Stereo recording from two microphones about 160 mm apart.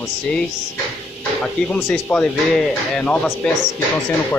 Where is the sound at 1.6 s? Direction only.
5° left (ahead or behind).